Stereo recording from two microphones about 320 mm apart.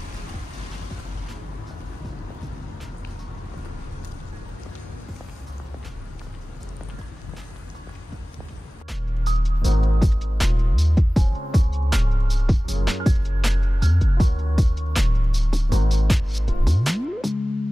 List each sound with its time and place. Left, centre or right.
9.2 s music: centre